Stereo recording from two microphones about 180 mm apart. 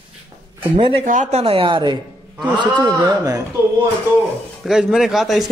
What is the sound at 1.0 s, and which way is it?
Speech, 40° right (ahead or behind).